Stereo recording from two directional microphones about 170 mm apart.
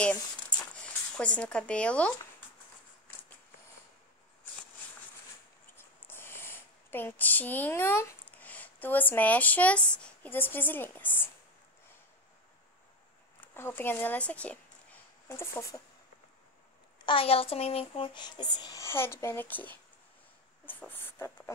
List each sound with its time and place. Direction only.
0.8 s speech: 5° left (ahead or behind)
5.8 s speech: 15° left (ahead or behind)
13.4 s speech: 10° left (ahead or behind)
17.0 s speech: 30° left (ahead or behind); by 21.3 s 10° left (ahead or behind)